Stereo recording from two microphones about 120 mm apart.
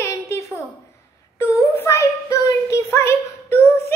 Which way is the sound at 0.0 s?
25° left (ahead or behind).